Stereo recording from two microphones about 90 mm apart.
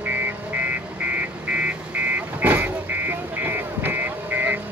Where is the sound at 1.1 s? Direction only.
15° right (ahead or behind).